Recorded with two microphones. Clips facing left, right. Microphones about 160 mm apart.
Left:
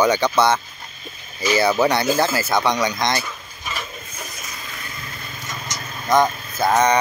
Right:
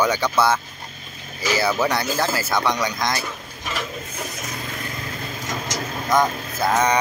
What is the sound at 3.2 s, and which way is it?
Dishes, 65° right (ahead or behind).